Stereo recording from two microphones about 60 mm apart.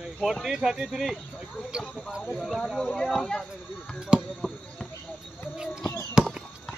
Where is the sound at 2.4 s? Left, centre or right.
Centre.